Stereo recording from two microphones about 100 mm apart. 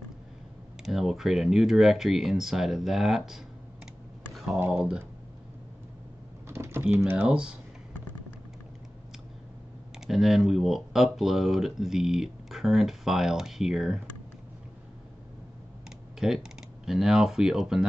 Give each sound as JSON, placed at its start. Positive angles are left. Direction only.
{"t": 0.8, "sound": "speech", "side_deg": 0}
{"t": 4.6, "sound": "speech", "side_deg": -15}
{"t": 6.5, "sound": "typing", "side_deg": -25}
{"t": 7.0, "sound": "speech", "side_deg": -25}
{"t": 7.2, "sound": "speech", "side_deg": -10}
{"t": 9.9, "sound": "speech", "side_deg": 0}
{"t": 16.2, "sound": "speech", "side_deg": -5}